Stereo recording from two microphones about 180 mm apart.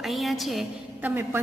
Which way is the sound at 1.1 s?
10° right (ahead or behind).